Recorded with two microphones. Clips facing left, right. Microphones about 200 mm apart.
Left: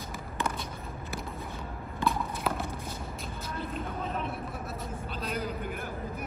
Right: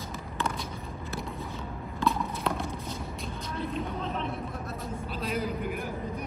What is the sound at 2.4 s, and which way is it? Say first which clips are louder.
Clip-clop: right 1 dB; 5° left (ahead or behind).